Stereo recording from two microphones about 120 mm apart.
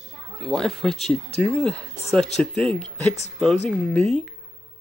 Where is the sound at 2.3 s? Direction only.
5° left (ahead or behind).